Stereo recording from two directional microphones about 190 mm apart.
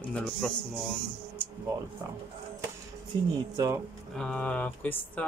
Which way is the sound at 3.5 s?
15° right (ahead or behind).